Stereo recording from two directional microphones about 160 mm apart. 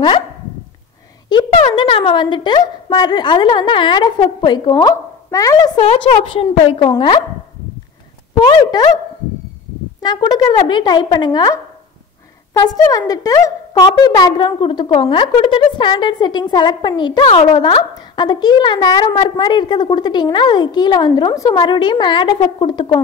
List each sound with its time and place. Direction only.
1.3 s a woman's voice: 30° left (ahead or behind)
5.8 s a woman's voice: 40° left (ahead or behind)
8.4 s a woman's voice: 25° left (ahead or behind)
10.0 s a woman's voice: 25° left (ahead or behind)